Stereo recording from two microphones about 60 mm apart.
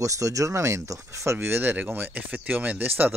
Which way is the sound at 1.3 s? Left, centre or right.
Right.